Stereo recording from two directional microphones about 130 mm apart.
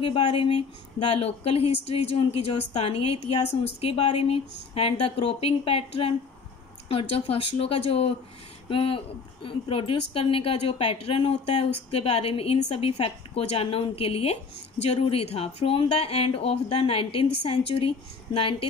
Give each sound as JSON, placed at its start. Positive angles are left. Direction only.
{"t": 0.0, "sound": "a woman's voice", "side_deg": 45}